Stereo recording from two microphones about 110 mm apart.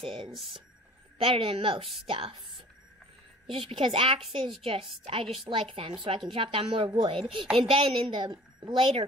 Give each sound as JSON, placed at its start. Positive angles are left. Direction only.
{"t": 0.0, "sound": "a woman's voice", "side_deg": -55}
{"t": 0.3, "sound": "a woman's voice", "side_deg": 0}
{"t": 1.1, "sound": "a woman's voice", "side_deg": -55}
{"t": 3.4, "sound": "a woman's voice", "side_deg": -50}
{"t": 4.2, "sound": "a woman's voice", "side_deg": 0}
{"t": 5.0, "sound": "a woman's voice", "side_deg": -60}